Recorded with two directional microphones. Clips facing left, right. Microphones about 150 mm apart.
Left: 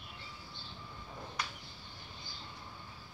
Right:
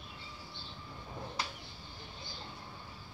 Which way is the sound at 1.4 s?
30° right (ahead or behind).